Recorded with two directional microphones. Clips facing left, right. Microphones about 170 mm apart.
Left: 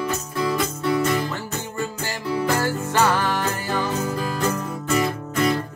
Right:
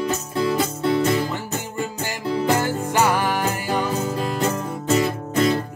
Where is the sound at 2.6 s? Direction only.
15° right (ahead or behind).